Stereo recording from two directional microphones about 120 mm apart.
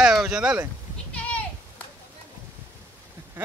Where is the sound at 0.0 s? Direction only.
5° right (ahead or behind).